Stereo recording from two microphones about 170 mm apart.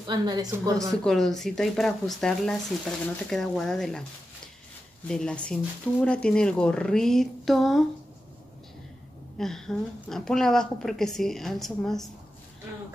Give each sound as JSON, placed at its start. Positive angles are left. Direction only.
{"t": 0.0, "sound": "a woman's voice", "side_deg": -25}
{"t": 0.7, "sound": "speech", "side_deg": 0}
{"t": 5.0, "sound": "speech", "side_deg": 5}
{"t": 9.4, "sound": "speech", "side_deg": 0}